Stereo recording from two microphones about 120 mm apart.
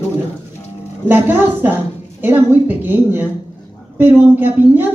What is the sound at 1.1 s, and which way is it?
Speech, 15° right (ahead or behind).